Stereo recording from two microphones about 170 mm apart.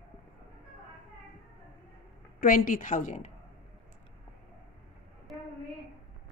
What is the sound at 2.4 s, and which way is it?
Speech, 55° left (ahead or behind).